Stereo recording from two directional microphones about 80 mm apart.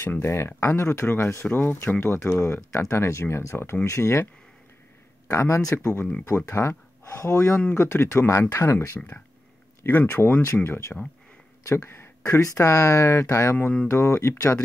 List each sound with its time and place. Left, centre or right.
0.0 s speech: left
5.3 s speech: left
12.4 s speech: left